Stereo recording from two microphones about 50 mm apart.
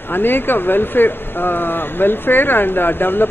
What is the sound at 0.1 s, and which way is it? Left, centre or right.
Speech, left.